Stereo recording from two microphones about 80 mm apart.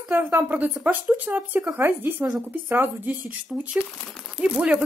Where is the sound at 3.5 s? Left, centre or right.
Centre.